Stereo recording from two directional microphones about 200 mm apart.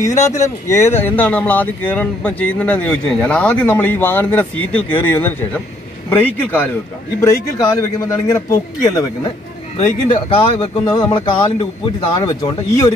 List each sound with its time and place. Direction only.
0.2 s speech: 15° left (ahead or behind)